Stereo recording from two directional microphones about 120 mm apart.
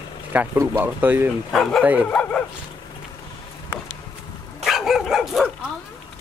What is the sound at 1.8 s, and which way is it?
Speech, 10° right (ahead or behind).